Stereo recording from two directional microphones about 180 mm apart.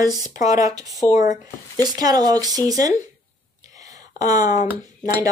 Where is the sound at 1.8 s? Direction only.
20° right (ahead or behind).